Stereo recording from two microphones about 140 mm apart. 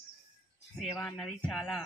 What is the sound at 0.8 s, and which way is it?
Speech, centre (ahead or behind).